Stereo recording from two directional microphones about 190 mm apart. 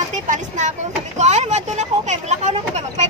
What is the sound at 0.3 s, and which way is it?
Speech, 40° right (ahead or behind).